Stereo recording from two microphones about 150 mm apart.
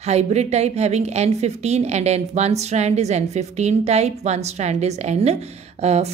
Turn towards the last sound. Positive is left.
turn(degrees=-45)  # may be behind; listen again after turning